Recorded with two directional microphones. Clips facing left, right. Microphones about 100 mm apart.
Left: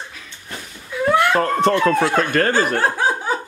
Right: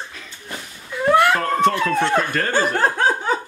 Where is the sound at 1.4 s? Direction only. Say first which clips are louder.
Left 1 dB; 30° left (ahead or behind).